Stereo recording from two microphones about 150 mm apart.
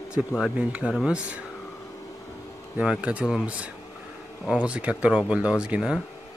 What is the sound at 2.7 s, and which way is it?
A man's voice, 5° right (ahead or behind).